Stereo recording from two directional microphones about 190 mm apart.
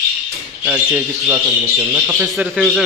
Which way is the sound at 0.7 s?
10° right (ahead or behind).